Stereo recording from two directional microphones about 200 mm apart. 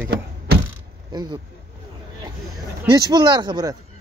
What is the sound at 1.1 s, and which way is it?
Speech, 20° right (ahead or behind).